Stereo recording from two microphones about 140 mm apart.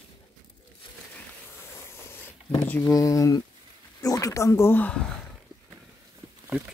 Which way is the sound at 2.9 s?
25° left (ahead or behind).